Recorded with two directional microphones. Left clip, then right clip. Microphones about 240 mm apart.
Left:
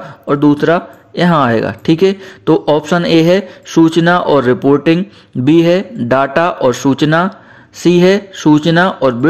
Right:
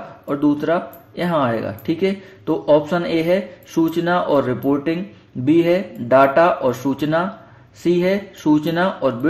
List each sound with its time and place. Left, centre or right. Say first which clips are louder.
0.3 s speech: left 8 dB; left